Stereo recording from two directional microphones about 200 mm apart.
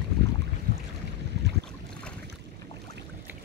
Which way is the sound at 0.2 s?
55° right (ahead or behind).